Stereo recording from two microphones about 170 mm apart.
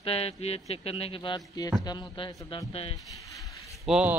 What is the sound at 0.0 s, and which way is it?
Speech, 35° left (ahead or behind).